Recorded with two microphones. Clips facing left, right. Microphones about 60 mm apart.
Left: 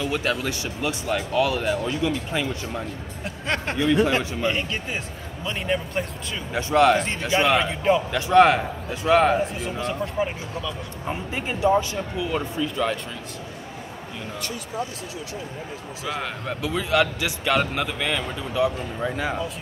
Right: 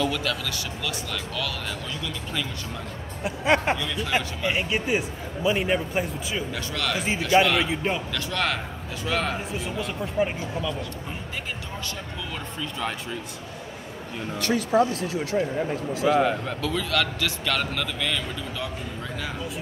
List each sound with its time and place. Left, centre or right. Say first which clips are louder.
0.0 s a man's voice: left 2 dB; left
3.3 s a man's voice: right 6 dB; centre
6.5 s a man's voice: left 11 dB; left
7.0 s a man's voice: right 2 dB; centre
8.1 s a man's voice: left 11 dB; left
9.5 s a man's voice: left 2 dB; centre
11.6 s a man's voice: left 14 dB; left
12.5 s a man's voice: left 3 dB; centre
14.4 s speech: right 11 dB; right
16.1 s a man's voice: right 9 dB; centre
16.6 s a man's voice: left 5 dB; centre